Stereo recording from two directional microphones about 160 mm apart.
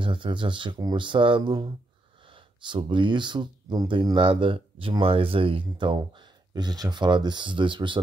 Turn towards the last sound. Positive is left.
turn(degrees=-30)  # may be behind; listen again after turning